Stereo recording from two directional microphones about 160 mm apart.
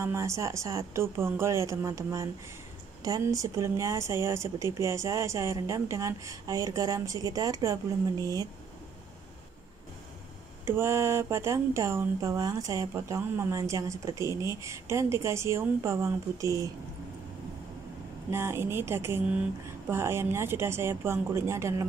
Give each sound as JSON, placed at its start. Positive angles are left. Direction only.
{"t": 0.0, "sound": "a woman's voice", "side_deg": -15}
{"t": 10.6, "sound": "speech", "side_deg": -15}
{"t": 18.3, "sound": "speech", "side_deg": -15}